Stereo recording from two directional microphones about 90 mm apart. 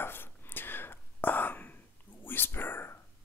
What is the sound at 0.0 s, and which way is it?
Whispering, 25° left (ahead or behind).